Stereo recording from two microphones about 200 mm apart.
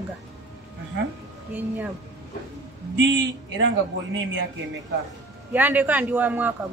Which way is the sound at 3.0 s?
65° right (ahead or behind).